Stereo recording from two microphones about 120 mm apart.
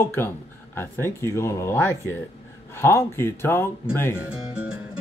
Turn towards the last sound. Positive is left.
turn(degrees=-5)  # may be behind; listen again after turning